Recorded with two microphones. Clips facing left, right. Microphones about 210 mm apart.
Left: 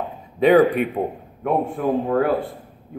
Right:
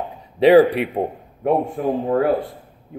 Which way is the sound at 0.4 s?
35° right (ahead or behind).